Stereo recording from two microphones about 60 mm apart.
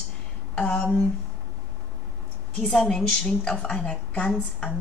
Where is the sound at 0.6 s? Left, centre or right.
Left.